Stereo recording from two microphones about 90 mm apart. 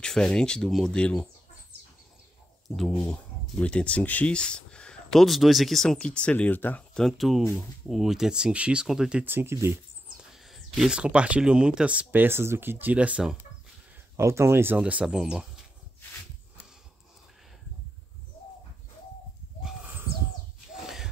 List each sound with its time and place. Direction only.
0.0 s speech: 10° left (ahead or behind)
3.1 s speech: 10° left (ahead or behind)
6.9 s speech: 5° left (ahead or behind)
9.2 s speech: 25° right (ahead or behind)
10.0 s speech: 5° right (ahead or behind)
14.1 s speech: 30° right (ahead or behind)
14.8 s speech: 15° right (ahead or behind)
19.8 s bird: 25° right (ahead or behind)